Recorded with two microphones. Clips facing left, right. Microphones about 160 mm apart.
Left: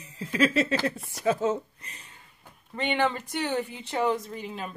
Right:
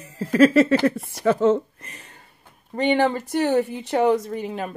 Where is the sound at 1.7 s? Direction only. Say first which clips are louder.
Right 5 dB; 50° right (ahead or behind).